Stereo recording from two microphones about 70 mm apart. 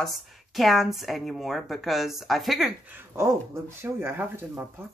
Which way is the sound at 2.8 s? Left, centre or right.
Right.